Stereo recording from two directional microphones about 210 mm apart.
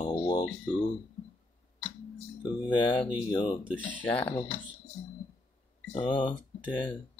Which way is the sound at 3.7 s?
5° left (ahead or behind).